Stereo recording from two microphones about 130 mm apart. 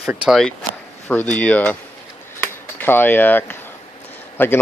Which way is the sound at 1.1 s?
10° left (ahead or behind).